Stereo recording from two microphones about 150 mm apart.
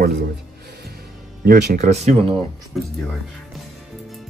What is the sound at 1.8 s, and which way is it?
Speech, 45° right (ahead or behind).